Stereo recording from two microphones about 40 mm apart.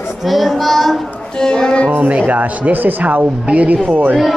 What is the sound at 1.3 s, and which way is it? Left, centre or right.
Speech, centre.